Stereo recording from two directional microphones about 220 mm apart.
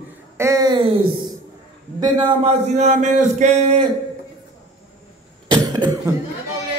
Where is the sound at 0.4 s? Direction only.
15° right (ahead or behind); by 3.8 s 30° right (ahead or behind).